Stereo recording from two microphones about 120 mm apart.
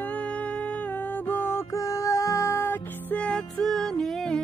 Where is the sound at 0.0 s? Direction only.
10° left (ahead or behind).